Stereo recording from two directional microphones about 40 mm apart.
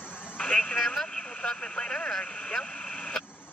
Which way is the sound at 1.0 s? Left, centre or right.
Centre.